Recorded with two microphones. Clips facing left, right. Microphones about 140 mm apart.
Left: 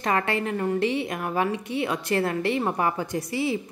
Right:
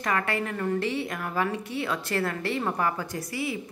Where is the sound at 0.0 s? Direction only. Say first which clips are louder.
Left 3 dB; 25° left (ahead or behind).